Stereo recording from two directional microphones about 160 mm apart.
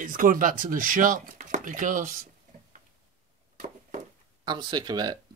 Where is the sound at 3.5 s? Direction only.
50° right (ahead or behind).